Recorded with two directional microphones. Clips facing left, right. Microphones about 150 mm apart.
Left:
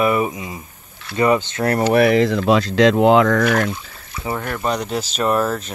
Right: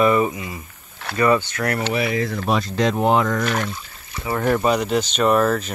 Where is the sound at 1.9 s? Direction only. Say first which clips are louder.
Left 8 dB; 65° left (ahead or behind).